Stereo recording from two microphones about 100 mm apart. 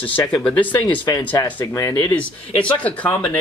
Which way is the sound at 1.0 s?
50° left (ahead or behind).